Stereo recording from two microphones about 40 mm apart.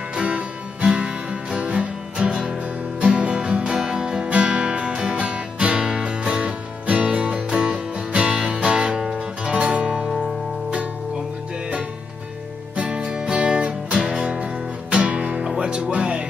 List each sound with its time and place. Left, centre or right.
0.1 s music: right
2.1 s music: centre
3.0 s music: right
4.3 s music: right
12.7 s music: right